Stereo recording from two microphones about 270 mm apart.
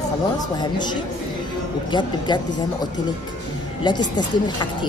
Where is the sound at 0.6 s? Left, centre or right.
Centre.